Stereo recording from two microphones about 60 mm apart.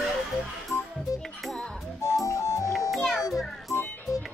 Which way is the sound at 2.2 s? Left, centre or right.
Left.